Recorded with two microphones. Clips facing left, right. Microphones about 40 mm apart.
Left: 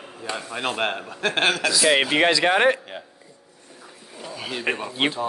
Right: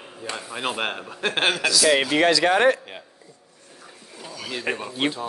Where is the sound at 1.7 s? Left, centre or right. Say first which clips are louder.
Right 1 dB; left.